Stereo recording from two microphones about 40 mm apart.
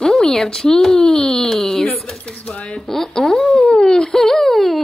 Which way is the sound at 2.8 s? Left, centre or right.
Centre.